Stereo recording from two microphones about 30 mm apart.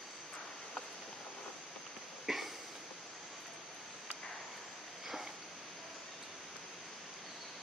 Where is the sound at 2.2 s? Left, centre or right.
Centre.